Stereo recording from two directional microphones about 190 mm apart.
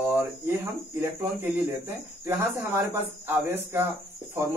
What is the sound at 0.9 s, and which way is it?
Speech, 10° right (ahead or behind).